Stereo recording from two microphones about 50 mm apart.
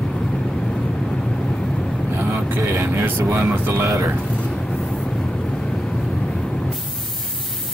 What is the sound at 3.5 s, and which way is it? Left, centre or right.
Speech, right.